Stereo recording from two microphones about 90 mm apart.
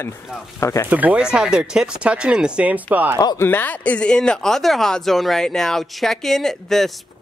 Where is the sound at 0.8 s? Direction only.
20° right (ahead or behind).